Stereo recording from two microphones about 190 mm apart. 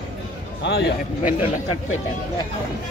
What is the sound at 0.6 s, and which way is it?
Speech, 60° left (ahead or behind).